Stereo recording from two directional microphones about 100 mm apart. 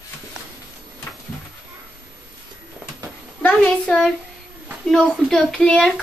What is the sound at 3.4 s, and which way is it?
Speech, 10° left (ahead or behind).